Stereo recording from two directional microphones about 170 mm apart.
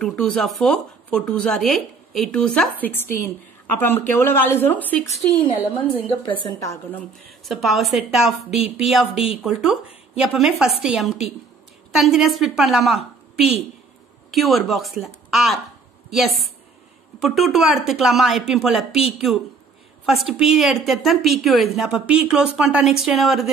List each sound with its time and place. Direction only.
0.0 s speech: centre (ahead or behind)
5.4 s a woman's voice: 30° left (ahead or behind)
6.6 s speech: 15° left (ahead or behind)
7.4 s a woman's voice: centre (ahead or behind)
14.3 s a woman's voice: centre (ahead or behind)